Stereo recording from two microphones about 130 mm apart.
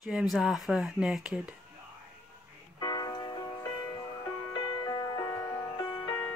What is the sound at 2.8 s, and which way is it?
Music, 30° left (ahead or behind).